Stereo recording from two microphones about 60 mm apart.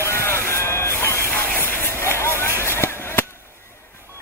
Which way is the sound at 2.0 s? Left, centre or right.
Left.